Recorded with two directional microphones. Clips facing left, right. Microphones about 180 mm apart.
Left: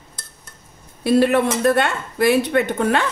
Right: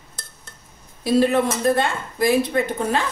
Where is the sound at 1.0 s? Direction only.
70° left (ahead or behind).